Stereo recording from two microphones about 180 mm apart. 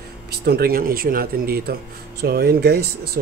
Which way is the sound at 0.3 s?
60° right (ahead or behind).